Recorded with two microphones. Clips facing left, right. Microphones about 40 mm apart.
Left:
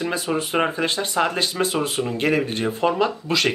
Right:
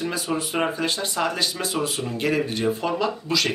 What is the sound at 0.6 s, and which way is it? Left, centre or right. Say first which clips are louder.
Speech: left 2 dB; left.